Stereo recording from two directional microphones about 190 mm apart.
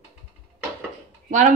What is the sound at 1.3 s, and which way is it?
Speech, 40° right (ahead or behind).